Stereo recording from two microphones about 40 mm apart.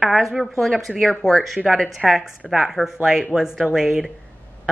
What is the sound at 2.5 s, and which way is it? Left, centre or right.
A woman's voice, centre.